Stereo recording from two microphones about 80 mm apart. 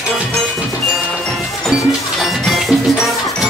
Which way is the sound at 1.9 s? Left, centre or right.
Centre.